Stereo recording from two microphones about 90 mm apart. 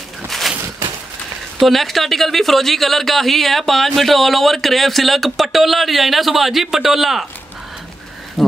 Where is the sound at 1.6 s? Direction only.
Centre (ahead or behind).